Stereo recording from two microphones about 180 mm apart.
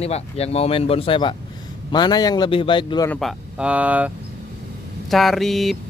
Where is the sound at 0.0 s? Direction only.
35° left (ahead or behind).